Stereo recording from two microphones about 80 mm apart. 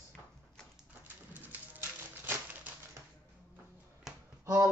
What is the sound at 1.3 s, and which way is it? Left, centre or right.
Typewriter, right.